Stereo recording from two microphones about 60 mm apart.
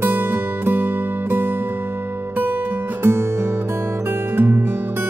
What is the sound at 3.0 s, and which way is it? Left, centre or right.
Music, right.